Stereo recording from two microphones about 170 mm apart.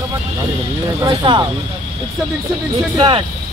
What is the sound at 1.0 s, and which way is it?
Speech, 25° right (ahead or behind).